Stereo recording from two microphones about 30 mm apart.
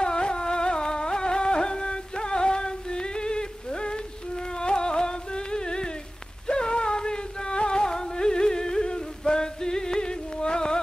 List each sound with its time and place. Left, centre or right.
0.0 s music: left